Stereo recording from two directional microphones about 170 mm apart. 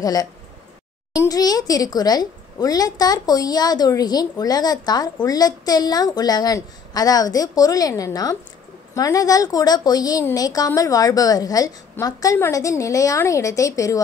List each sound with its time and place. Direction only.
0.0 s a woman's voice: 20° left (ahead or behind)